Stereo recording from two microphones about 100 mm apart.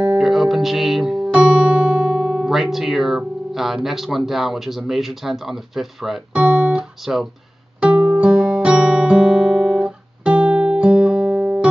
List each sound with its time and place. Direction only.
0.0 s music: 5° right (ahead or behind)
3.5 s speech: 5° right (ahead or behind)
7.8 s music: 15° right (ahead or behind)
8.3 s guitar: 5° right (ahead or behind)